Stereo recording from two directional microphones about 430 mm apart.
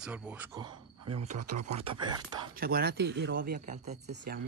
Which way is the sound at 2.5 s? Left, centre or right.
Right.